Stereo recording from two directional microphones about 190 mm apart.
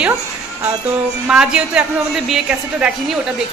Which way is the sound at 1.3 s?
5° right (ahead or behind).